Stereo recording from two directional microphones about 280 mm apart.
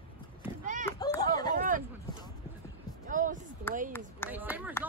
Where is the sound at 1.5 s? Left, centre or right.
Right.